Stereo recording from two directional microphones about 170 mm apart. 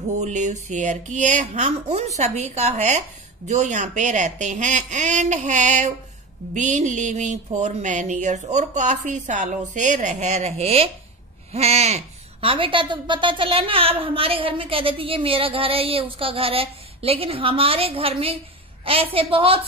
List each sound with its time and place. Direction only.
0.2 s speech: 45° right (ahead or behind)